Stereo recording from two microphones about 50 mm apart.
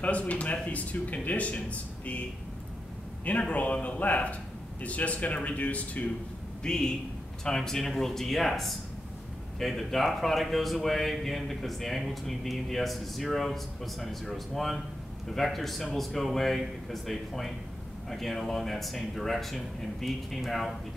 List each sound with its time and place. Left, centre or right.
0.0 s speech: left
3.3 s speech: left
6.6 s a man's voice: centre